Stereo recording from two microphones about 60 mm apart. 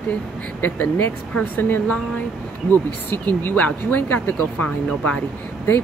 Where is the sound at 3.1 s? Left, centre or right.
Left.